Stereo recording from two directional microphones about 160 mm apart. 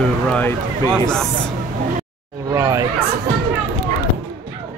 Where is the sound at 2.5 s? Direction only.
20° right (ahead or behind).